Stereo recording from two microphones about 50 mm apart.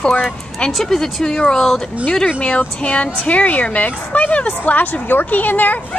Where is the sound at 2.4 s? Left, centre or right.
Left.